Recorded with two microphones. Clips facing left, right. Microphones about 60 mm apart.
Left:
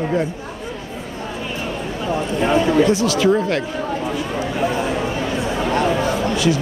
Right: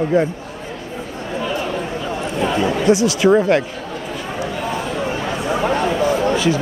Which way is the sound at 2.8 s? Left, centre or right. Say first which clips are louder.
Right 2 dB; centre.